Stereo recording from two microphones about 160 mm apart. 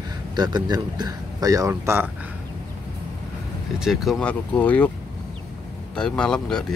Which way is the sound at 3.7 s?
Centre (ahead or behind).